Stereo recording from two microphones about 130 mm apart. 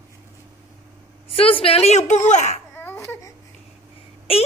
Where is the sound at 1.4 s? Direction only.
45° left (ahead or behind); by 2.5 s 65° left (ahead or behind).